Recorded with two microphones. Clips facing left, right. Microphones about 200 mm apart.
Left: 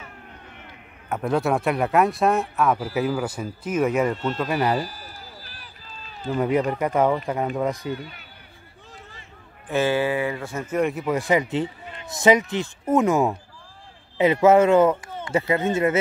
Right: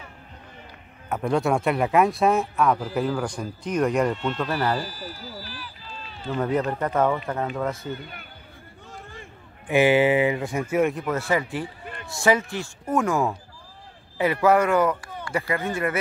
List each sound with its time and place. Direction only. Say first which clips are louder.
1.0 s speech: even; centre (ahead or behind)
4.4 s speech: left 2 dB; 15° left (ahead or behind)
6.2 s speech: left 2 dB; 10° left (ahead or behind)
9.7 s speech: right 4 dB; 15° right (ahead or behind)
11.1 s speech: left 3 dB; 15° left (ahead or behind)